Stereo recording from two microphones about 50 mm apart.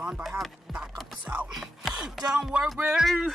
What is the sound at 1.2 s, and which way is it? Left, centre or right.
Speech, right.